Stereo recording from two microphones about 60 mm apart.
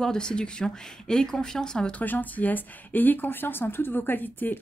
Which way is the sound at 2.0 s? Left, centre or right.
Left.